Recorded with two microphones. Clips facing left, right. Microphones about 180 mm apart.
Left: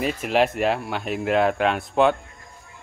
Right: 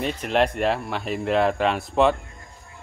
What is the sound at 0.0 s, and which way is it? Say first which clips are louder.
Speech: left 1 dB; 5° left (ahead or behind).